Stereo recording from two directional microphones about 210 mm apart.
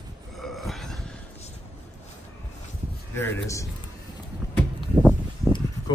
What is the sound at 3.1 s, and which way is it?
Speech, 15° left (ahead or behind).